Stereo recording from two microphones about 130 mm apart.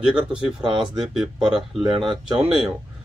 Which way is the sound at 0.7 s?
35° right (ahead or behind).